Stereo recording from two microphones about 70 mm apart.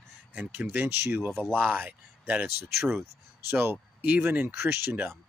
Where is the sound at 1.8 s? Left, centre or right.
Right.